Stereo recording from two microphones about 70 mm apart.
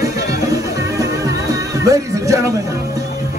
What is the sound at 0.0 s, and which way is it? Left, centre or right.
Music, right.